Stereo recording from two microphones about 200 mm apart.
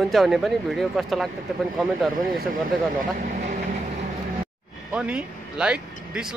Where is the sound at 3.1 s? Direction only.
45° right (ahead or behind).